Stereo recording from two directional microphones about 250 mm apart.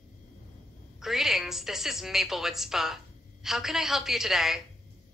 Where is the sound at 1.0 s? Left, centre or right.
Centre.